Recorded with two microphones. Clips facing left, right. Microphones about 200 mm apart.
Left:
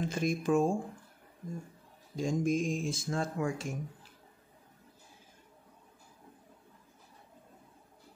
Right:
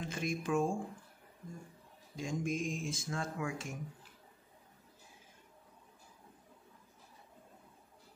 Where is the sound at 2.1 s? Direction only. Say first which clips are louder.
Left 7 dB; 35° left (ahead or behind).